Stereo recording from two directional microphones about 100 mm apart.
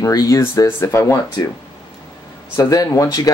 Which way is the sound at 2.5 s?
35° left (ahead or behind).